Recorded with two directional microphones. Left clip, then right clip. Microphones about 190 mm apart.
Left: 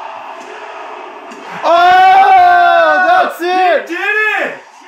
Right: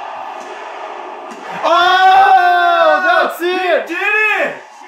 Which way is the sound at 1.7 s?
20° left (ahead or behind).